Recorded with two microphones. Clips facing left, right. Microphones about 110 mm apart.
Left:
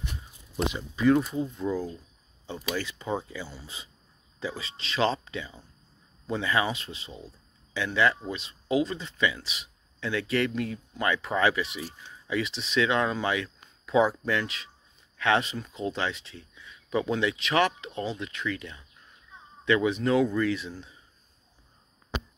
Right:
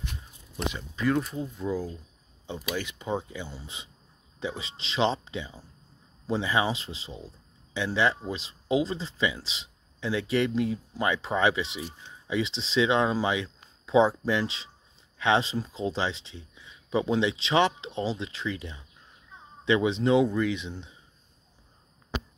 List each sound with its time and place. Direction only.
0.6 s speech: 15° left (ahead or behind)
1.0 s speech: centre (ahead or behind)
1.5 s speech: 10° right (ahead or behind)